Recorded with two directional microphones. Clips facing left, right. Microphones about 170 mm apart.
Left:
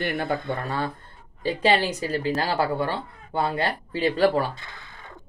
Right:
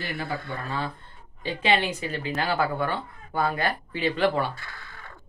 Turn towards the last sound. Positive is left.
turn(degrees=20)  # may be behind; listen again after turning